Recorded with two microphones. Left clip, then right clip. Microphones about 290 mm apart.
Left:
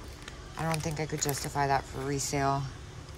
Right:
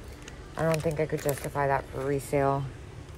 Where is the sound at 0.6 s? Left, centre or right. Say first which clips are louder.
Right 6 dB; centre.